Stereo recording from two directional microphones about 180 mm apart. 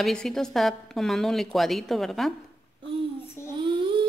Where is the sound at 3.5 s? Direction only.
25° right (ahead or behind).